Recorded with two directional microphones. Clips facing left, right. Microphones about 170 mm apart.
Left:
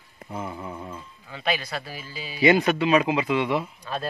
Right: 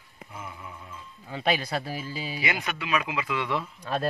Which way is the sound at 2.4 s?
30° left (ahead or behind).